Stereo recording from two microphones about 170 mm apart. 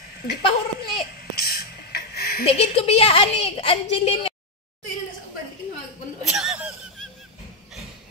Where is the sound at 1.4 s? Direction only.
65° left (ahead or behind).